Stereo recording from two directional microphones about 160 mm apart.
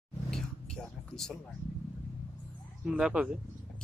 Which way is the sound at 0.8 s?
5° left (ahead or behind).